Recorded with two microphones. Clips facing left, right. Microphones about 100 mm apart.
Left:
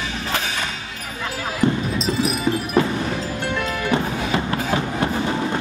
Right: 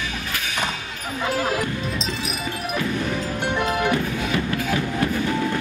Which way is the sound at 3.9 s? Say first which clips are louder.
Left 2 dB; 35° left (ahead or behind).